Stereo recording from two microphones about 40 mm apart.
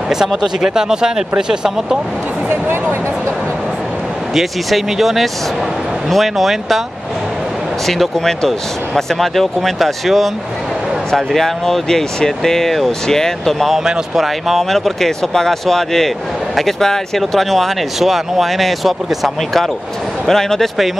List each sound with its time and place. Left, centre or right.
0.4 s speech: centre
2.5 s speech: right
4.4 s speech: centre
7.8 s speech: centre
20.2 s speech: centre